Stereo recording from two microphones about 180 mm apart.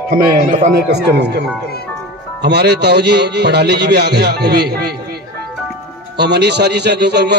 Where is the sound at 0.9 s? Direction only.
70° right (ahead or behind).